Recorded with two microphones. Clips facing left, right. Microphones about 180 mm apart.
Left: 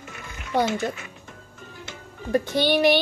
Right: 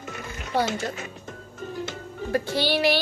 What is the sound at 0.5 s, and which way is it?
Speech, 15° left (ahead or behind).